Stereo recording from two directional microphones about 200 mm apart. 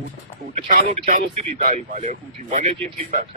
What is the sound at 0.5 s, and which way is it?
Speech, 40° right (ahead or behind).